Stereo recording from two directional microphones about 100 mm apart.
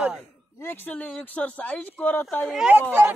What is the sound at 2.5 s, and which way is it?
Speech, 5° right (ahead or behind).